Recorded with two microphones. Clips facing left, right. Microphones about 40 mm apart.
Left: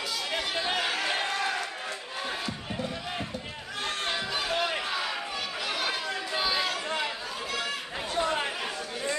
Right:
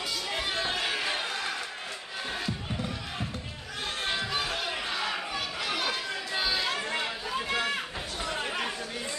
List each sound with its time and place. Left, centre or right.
0.6 s a sound: centre
4.1 s music: centre
4.6 s chatter: centre
7.4 s chatter: right
8.2 s chatter: left